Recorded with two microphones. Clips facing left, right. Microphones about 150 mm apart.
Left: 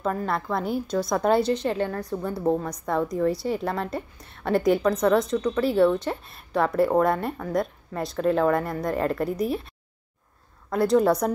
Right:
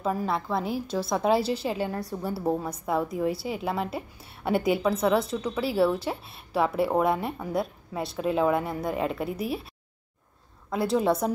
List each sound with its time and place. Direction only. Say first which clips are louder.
0.0 s a woman's voice: left 1 dB; 5° right (ahead or behind)
10.7 s a woman's voice: left 4 dB; 5° right (ahead or behind)